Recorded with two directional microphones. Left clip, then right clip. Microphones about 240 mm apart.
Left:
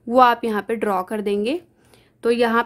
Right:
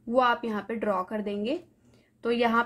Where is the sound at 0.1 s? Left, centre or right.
Left.